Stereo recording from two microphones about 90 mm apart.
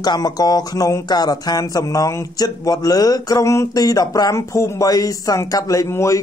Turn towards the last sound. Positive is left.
turn(degrees=35)  # may be behind; listen again after turning